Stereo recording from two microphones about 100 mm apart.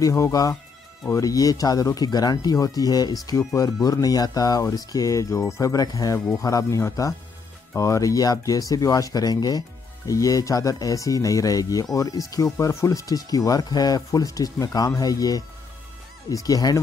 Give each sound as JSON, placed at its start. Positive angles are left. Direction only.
{"t": 0.0, "sound": "speech", "side_deg": 35}